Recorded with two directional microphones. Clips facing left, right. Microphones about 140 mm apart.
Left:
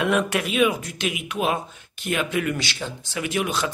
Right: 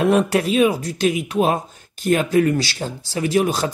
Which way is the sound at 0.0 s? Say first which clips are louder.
Right 6 dB; 35° right (ahead or behind).